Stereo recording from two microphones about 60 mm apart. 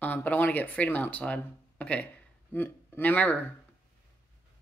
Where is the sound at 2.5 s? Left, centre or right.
Left.